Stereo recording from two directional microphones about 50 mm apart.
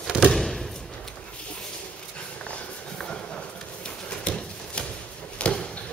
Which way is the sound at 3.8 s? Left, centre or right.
Left.